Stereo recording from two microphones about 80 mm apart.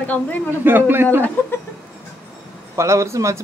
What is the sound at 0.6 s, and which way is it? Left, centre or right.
Speech, right.